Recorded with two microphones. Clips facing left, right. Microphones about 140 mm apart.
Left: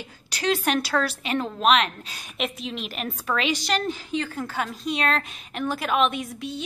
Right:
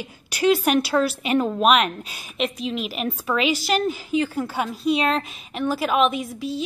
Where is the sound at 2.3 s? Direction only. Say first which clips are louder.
Right 5 dB; centre (ahead or behind).